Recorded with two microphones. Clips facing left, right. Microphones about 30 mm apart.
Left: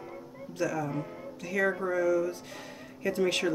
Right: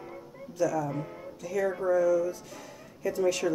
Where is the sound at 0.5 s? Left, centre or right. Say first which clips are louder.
Right 3 dB; left.